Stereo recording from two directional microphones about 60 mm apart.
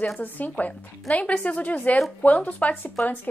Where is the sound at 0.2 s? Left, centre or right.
Left.